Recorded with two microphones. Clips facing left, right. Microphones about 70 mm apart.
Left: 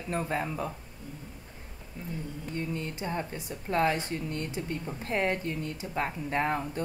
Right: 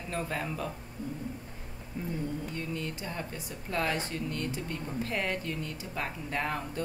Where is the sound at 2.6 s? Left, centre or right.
Left.